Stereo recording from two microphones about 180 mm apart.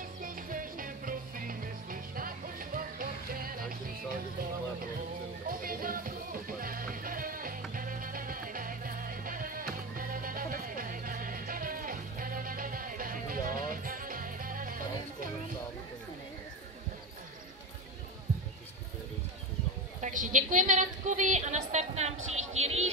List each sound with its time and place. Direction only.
0.2 s music: 50° right (ahead or behind)
5.5 s music: 55° right (ahead or behind)
20.0 s a woman's voice: 45° right (ahead or behind)